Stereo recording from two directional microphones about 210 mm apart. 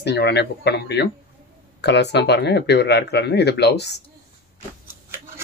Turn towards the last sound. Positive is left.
turn(degrees=55)  # may be behind; listen again after turning